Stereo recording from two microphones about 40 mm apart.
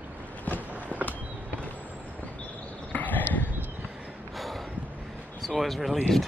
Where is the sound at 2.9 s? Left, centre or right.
Left.